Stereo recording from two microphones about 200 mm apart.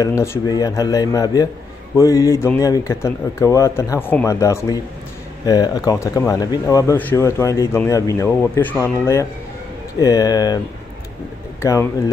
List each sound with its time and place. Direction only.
0.0 s speech: 15° left (ahead or behind)
11.6 s speech: 15° left (ahead or behind)